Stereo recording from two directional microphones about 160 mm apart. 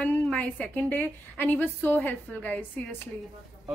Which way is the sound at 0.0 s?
10° left (ahead or behind).